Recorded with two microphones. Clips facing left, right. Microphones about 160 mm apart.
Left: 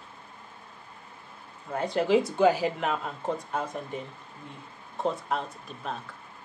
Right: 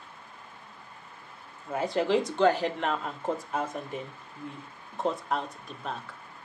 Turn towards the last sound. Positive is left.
turn(degrees=0)  # may be behind; listen again after turning